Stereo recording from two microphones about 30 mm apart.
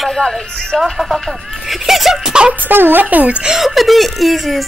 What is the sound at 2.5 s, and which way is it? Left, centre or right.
Speech, right.